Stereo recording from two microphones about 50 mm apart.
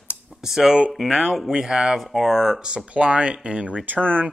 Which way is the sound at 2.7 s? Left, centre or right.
Right.